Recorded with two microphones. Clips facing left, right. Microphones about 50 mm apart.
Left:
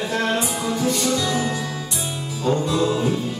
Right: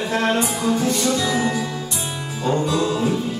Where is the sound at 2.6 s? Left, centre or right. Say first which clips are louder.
Even; centre.